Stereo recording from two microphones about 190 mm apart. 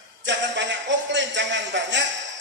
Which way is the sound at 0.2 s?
70° right (ahead or behind).